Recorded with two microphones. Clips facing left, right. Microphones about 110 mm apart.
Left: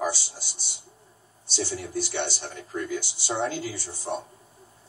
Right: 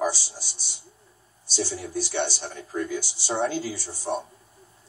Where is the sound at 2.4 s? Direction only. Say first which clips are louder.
Right 2 dB; 15° right (ahead or behind).